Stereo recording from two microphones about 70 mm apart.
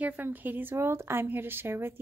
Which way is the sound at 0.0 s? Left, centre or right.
Right.